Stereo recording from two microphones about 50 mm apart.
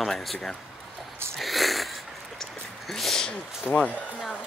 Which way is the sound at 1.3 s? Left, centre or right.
Centre.